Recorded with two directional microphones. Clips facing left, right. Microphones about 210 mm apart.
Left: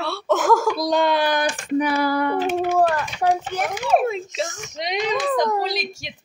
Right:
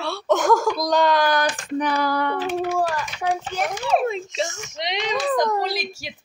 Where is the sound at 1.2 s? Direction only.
15° left (ahead or behind).